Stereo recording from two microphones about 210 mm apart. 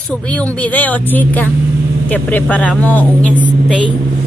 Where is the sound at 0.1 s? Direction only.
5° left (ahead or behind).